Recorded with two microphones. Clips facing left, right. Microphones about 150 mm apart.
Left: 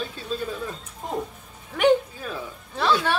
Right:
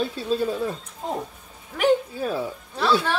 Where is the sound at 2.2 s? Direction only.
35° right (ahead or behind).